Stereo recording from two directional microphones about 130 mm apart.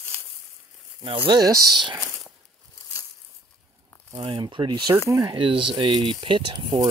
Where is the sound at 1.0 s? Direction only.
40° right (ahead or behind).